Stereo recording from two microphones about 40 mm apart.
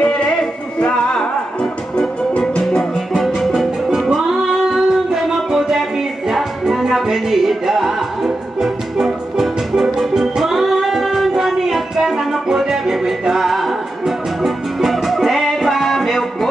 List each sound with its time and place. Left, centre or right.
0.0 s music: left
4.1 s music: centre